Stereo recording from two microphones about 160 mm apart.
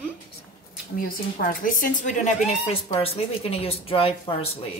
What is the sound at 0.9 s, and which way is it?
A woman's voice, 60° left (ahead or behind).